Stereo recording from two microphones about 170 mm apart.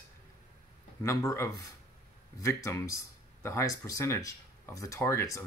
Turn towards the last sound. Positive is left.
turn(degrees=15)  # may be behind; listen again after turning